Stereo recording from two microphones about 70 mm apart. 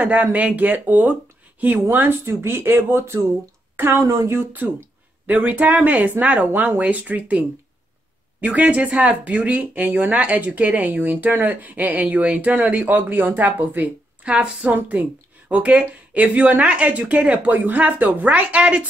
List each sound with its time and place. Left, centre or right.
0.0 s speech: right
4.1 s speech: right
4.4 s speech: right
14.3 s a woman's voice: centre